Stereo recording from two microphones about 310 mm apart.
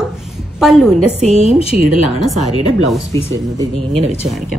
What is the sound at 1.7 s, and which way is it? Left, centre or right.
Speech, right.